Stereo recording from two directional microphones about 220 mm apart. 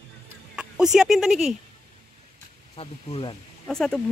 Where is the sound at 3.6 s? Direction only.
5° left (ahead or behind).